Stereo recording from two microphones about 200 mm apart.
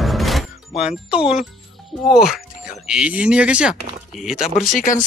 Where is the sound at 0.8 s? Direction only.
5° right (ahead or behind).